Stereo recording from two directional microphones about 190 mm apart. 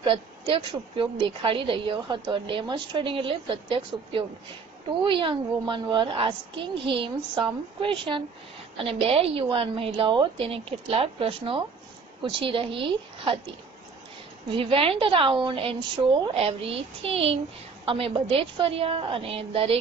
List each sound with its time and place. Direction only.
0.0 s a woman's voice: 25° right (ahead or behind)
14.5 s a woman's voice: 30° right (ahead or behind)